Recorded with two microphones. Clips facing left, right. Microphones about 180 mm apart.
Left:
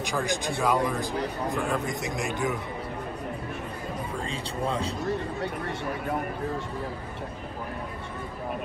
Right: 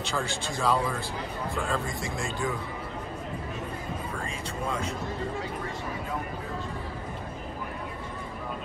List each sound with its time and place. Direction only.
0.0 s speech: 15° left (ahead or behind)